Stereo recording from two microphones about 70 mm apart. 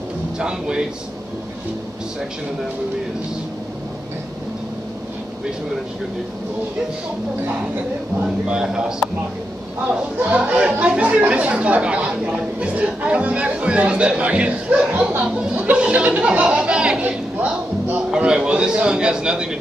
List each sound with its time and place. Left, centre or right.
0.4 s speech: centre
8.2 s speech: centre
15.2 s speech: centre
15.5 s chatter: right
18.1 s speech: centre